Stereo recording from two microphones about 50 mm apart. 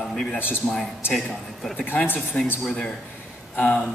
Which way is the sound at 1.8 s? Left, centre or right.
Left.